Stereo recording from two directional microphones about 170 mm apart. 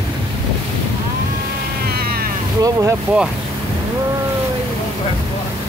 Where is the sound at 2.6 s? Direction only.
20° right (ahead or behind).